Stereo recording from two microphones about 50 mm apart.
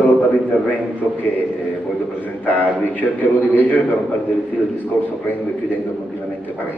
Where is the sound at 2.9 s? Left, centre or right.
Left.